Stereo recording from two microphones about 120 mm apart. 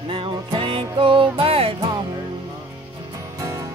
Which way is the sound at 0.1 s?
40° right (ahead or behind).